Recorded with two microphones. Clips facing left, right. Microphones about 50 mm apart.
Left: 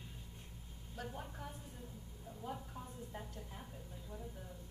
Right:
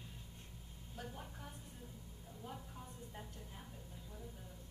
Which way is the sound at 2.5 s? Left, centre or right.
Centre.